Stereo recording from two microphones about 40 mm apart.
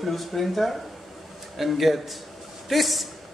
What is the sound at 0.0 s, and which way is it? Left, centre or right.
A man's voice, centre.